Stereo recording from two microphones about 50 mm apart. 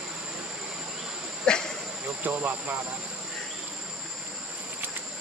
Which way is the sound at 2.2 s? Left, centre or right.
Right.